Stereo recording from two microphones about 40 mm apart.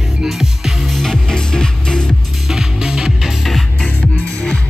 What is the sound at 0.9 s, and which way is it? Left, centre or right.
Music, centre.